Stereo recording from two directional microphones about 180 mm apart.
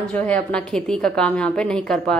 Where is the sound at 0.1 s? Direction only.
5° left (ahead or behind).